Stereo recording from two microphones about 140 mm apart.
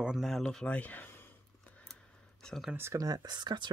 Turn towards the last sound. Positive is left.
turn(degrees=-30)  # may be behind; listen again after turning